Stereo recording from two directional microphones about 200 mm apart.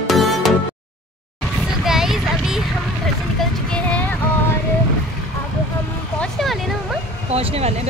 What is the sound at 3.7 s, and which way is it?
Music, 5° left (ahead or behind).